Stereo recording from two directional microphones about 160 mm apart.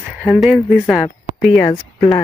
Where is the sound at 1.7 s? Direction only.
20° left (ahead or behind).